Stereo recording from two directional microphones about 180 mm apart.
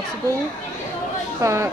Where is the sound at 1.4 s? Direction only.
15° right (ahead or behind).